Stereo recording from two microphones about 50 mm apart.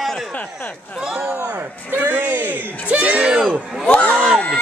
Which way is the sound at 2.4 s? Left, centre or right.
Right.